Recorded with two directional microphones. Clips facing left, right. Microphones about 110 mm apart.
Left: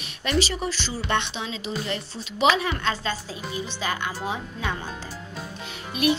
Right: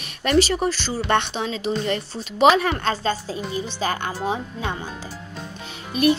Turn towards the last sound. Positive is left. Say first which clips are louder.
# right 4 dB
turn(degrees=-40)  # may be behind; listen again after turning